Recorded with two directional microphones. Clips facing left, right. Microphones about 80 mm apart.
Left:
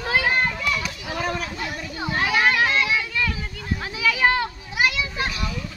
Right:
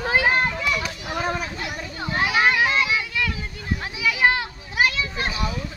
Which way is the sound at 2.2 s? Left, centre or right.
Centre.